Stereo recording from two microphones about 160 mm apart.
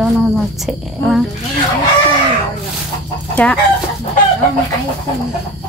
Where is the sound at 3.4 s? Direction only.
5° left (ahead or behind).